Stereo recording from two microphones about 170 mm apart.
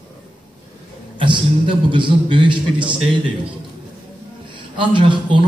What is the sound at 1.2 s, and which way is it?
A man's voice, 30° right (ahead or behind).